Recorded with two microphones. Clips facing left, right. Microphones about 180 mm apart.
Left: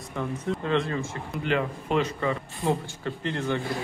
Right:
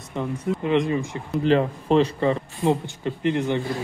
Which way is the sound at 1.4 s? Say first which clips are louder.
Right 7 dB; 35° right (ahead or behind).